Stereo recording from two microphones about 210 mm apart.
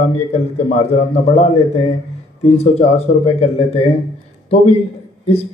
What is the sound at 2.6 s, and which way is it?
Speech, 30° left (ahead or behind).